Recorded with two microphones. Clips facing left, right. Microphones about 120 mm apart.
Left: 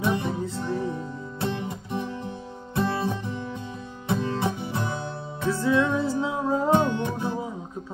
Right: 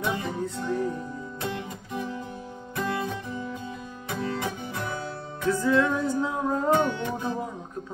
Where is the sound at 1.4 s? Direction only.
25° left (ahead or behind).